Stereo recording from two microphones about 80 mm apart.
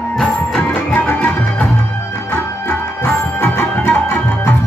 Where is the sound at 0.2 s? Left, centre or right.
Centre.